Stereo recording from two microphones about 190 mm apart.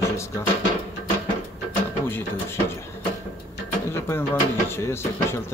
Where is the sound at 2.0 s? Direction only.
10° left (ahead or behind).